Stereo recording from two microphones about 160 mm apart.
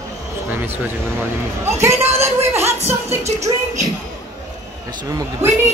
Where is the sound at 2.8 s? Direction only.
40° right (ahead or behind).